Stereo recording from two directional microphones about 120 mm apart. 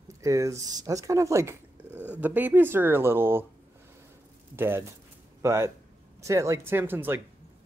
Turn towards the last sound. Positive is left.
turn(degrees=-15)  # may be behind; listen again after turning